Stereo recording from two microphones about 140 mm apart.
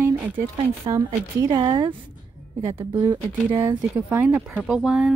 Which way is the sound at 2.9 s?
30° right (ahead or behind).